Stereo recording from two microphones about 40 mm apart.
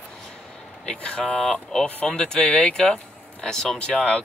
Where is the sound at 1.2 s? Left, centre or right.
Centre.